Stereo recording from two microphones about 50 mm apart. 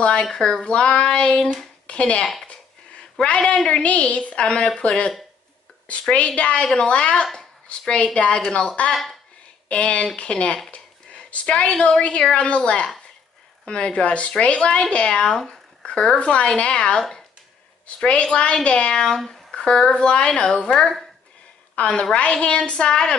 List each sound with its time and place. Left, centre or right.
0.0 s a woman's voice: centre
2.4 s a sound: left
3.4 s a woman's voice: left
6.1 s a woman's voice: left
15.3 s a woman's voice: centre
19.1 s speech: centre
19.5 s a woman's voice: centre
21.7 s a woman's voice: left
22.7 s a sound: centre